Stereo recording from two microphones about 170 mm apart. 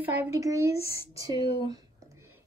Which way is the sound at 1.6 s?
20° right (ahead or behind).